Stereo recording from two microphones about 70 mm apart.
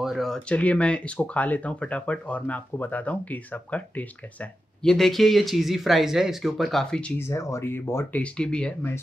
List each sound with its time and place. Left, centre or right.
0.0 s a sound: centre
0.5 s speech: centre
4.8 s speech: centre
7.2 s speech: left
8.1 s speech: centre